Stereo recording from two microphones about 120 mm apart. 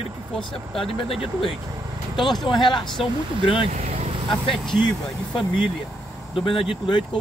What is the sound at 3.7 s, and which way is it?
Speech, 80° right.